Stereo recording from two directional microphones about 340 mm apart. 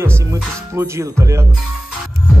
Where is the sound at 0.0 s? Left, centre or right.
Centre.